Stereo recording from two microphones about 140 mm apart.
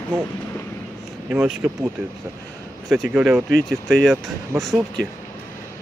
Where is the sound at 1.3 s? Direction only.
10° right (ahead or behind).